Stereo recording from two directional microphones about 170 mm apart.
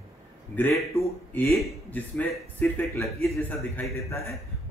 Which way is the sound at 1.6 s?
5° left (ahead or behind).